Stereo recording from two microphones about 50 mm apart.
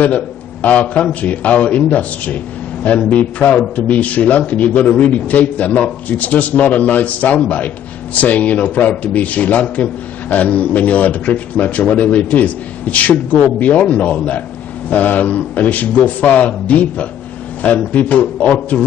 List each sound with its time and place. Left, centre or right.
0.0 s a man's voice: left